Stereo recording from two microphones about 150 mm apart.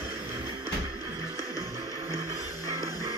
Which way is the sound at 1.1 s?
20° right (ahead or behind).